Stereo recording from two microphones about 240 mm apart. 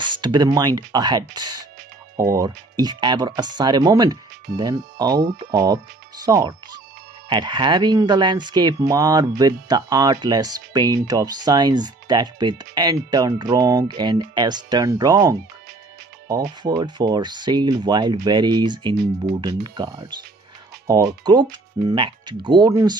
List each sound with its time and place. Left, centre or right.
0.2 s speech: centre